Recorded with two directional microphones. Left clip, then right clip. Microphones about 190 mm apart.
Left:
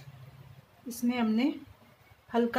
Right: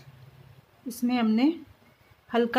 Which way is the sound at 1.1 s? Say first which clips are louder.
Right 5 dB; 45° right (ahead or behind).